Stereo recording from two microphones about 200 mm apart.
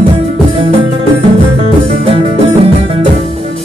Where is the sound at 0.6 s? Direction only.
30° right (ahead or behind).